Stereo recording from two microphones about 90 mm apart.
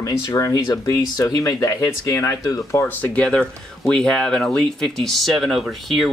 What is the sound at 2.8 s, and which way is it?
Speech, 15° left (ahead or behind).